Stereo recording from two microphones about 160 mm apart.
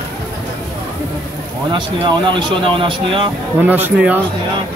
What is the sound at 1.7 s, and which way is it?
Speech, 30° right (ahead or behind).